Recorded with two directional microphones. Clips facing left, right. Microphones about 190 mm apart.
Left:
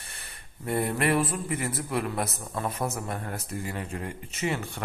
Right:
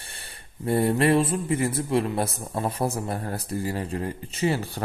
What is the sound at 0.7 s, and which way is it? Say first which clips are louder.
A man's voice: right 5 dB; 30° right (ahead or behind).